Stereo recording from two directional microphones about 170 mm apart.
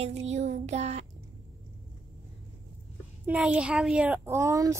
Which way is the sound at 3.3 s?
5° right (ahead or behind).